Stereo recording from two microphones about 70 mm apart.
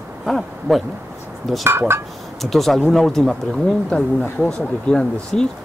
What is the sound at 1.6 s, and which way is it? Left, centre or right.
Speech, right.